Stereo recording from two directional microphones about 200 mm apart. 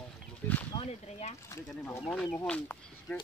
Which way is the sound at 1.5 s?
15° left (ahead or behind).